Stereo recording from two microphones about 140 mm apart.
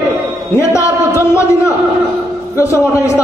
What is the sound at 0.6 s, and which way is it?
Speech, 20° left (ahead or behind).